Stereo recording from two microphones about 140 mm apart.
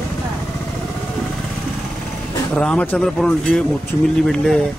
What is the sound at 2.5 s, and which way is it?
Speech, 5° left (ahead or behind).